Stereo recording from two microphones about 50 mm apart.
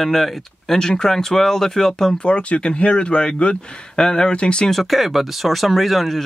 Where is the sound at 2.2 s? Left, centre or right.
Left.